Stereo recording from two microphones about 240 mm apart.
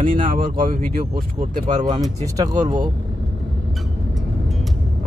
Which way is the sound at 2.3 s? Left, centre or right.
Centre.